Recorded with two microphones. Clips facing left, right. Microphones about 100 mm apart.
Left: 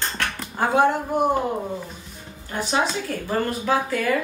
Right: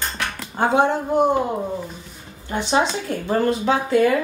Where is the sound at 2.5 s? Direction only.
25° right (ahead or behind).